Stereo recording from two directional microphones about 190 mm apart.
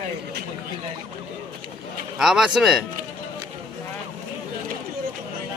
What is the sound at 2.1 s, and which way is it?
Speech, 5° right (ahead or behind).